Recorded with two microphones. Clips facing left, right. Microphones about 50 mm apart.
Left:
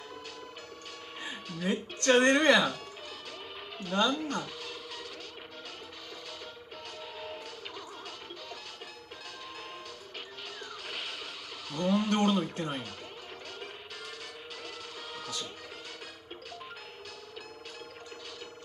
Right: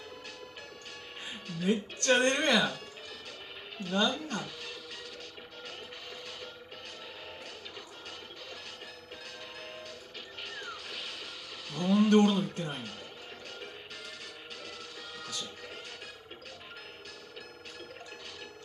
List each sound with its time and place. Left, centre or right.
1.6 s speech: left
3.9 s speech: left
11.7 s speech: left